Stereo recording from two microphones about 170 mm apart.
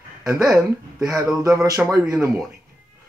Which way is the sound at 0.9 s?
20° right (ahead or behind).